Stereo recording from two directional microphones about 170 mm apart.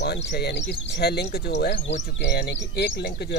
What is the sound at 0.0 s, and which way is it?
Speech, 80° left.